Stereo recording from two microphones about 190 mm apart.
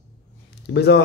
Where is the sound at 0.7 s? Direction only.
60° left (ahead or behind).